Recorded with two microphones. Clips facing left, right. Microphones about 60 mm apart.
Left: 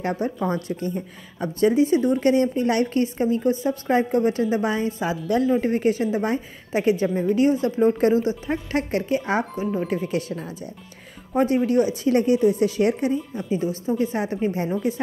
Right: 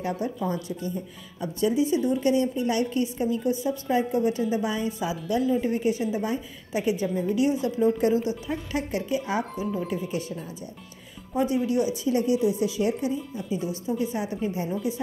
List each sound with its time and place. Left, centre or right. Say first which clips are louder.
0.0 s a woman's voice: left 4 dB; left
11.3 s a woman's voice: left 5 dB; left
13.5 s a woman's voice: left 5 dB; left